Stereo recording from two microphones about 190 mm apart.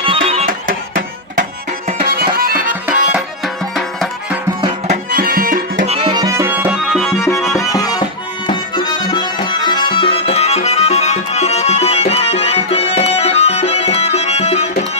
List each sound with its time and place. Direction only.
0.0 s music: 30° right (ahead or behind)
0.5 s music: 45° right (ahead or behind)
2.0 s music: 55° right (ahead or behind)
3.1 s music: centre (ahead or behind)
4.6 s music: 25° right (ahead or behind)
5.1 s music: 50° right (ahead or behind)
5.9 s music: 35° right (ahead or behind)
6.1 s music: 15° right (ahead or behind)
7.5 s music: 20° left (ahead or behind)
8.5 s accordion: 20° left (ahead or behind)